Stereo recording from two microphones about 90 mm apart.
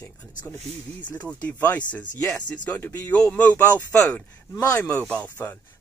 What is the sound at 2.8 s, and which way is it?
Speech, 20° left (ahead or behind).